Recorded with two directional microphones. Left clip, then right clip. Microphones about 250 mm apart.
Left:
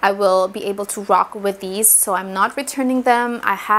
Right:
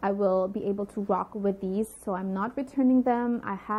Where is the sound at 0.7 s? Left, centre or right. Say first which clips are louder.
Left 8 dB; centre.